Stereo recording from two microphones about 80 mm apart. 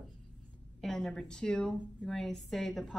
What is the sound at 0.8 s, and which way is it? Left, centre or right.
A woman's voice, centre.